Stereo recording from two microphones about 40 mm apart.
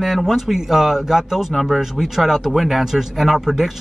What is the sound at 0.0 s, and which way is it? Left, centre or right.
Speech, centre.